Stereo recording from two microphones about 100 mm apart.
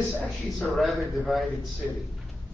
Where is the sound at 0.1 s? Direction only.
15° left (ahead or behind).